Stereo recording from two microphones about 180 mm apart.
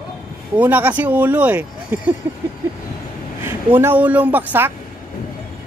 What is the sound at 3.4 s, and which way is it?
A woman's voice, 10° right (ahead or behind).